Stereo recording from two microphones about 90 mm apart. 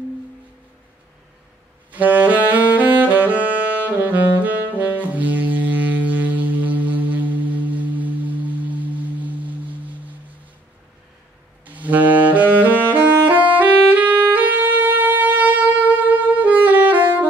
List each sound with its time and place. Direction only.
1.9 s saxophone: 20° right (ahead or behind)
11.6 s saxophone: 15° right (ahead or behind)